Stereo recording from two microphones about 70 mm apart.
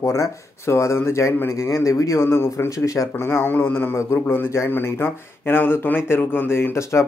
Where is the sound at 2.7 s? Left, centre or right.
Left.